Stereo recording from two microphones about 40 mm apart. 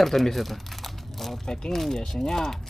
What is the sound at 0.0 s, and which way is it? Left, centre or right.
Crumpling, centre.